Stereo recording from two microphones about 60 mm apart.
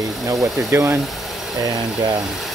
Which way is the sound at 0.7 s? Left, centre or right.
Right.